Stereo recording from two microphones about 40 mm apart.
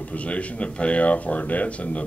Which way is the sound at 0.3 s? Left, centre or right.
Left.